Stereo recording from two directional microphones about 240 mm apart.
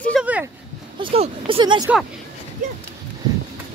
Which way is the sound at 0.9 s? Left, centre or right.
Right.